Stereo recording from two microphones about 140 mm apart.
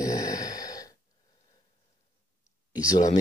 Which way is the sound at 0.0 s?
25° left (ahead or behind).